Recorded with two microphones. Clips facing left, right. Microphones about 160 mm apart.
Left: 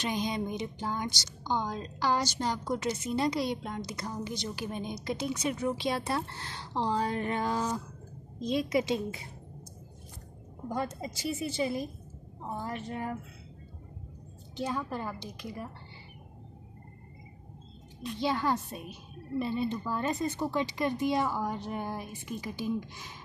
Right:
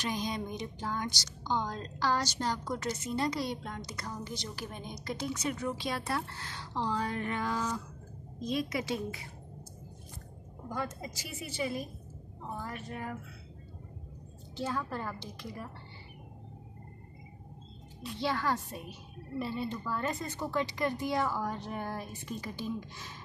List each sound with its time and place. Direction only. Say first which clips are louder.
0.0 s a woman's voice: left 3 dB; 20° left (ahead or behind)
10.7 s a woman's voice: left 3 dB; 25° left (ahead or behind)
14.6 s a woman's voice: left 2 dB; 15° left (ahead or behind)
18.2 s a woman's voice: left 2 dB; 20° left (ahead or behind)